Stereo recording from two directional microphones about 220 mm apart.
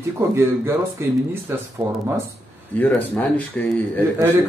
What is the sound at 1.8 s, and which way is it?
Speech, 20° right (ahead or behind).